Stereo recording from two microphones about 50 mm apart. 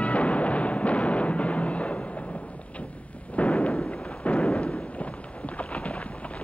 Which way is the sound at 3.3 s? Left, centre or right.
Left.